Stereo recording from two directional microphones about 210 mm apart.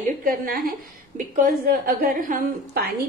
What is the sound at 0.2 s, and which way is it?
A woman's voice, 40° right (ahead or behind).